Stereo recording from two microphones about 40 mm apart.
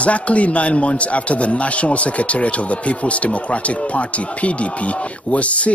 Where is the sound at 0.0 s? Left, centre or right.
Left.